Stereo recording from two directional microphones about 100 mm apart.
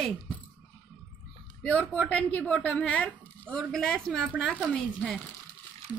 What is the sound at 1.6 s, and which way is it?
A woman's voice, 10° left (ahead or behind).